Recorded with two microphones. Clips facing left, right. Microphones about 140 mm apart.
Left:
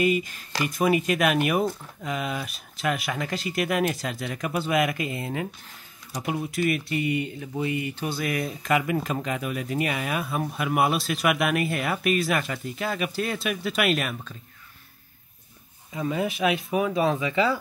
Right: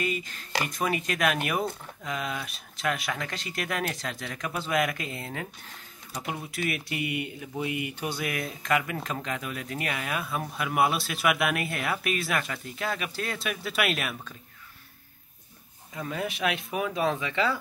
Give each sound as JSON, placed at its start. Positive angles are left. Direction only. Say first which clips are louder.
{"t": 0.0, "sound": "speech", "louder": "left 8 dB", "side_deg": 10}
{"t": 15.9, "sound": "speech", "louder": "left 6 dB", "side_deg": 5}